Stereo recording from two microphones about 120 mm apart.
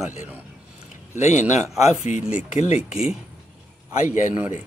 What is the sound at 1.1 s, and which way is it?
A man's voice, 85° left.